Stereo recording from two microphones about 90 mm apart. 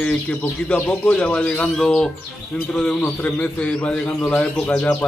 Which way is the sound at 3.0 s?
20° left (ahead or behind).